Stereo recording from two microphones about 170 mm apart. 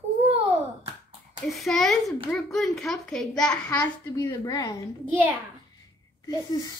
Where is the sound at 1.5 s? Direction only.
Centre (ahead or behind); by 4.7 s 20° left (ahead or behind).